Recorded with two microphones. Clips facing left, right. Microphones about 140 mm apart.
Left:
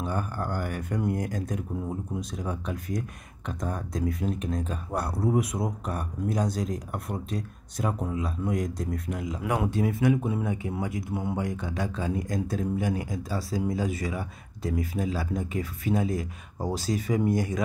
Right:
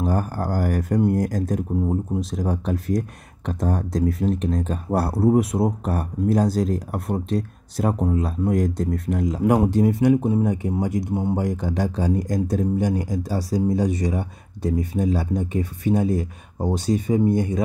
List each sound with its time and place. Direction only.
0.0 s speech: 35° right (ahead or behind)
9.2 s speech: 45° right (ahead or behind); by 17.6 s 25° right (ahead or behind)